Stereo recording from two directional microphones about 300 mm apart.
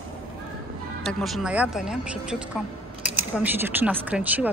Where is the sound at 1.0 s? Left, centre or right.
Centre.